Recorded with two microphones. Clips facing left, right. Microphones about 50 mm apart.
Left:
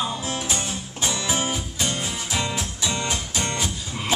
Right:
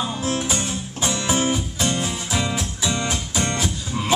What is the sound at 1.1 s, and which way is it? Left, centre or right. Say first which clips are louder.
Music: right 5 dB; centre.